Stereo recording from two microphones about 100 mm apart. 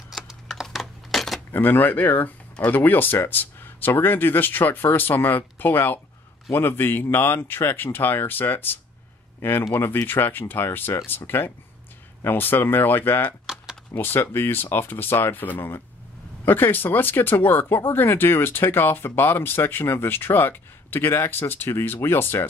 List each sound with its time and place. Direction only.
0.1 s computer keyboard: centre (ahead or behind)
1.5 s speech: 20° left (ahead or behind)